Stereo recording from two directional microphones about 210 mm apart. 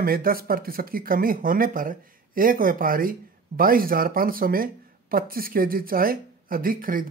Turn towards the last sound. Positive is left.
turn(degrees=-40)  # may be behind; listen again after turning